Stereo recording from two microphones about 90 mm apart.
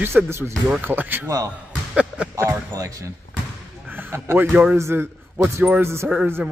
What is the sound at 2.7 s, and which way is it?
Speech, 40° right (ahead or behind).